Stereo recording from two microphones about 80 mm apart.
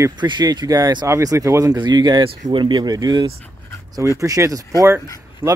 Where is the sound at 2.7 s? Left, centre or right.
Right.